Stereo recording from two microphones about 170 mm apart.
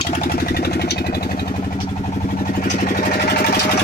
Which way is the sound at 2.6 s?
45° left (ahead or behind).